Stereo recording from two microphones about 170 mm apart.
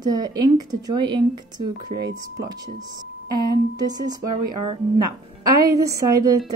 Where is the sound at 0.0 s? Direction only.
25° right (ahead or behind).